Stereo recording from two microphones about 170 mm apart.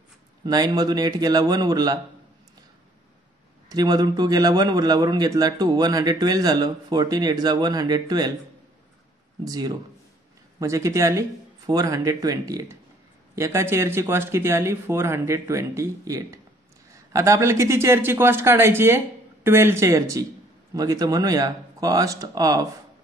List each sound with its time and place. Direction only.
0.5 s a man's voice: 25° right (ahead or behind)
3.6 s a man's voice: 25° right (ahead or behind)
9.4 s a man's voice: 25° right (ahead or behind)